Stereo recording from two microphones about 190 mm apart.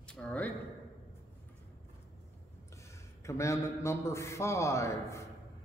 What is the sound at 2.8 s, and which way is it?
A man's voice, 15° left (ahead or behind).